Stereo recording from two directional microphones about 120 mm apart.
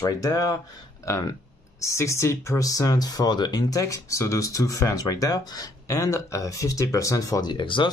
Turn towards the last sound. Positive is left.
turn(degrees=40)  # may be behind; listen again after turning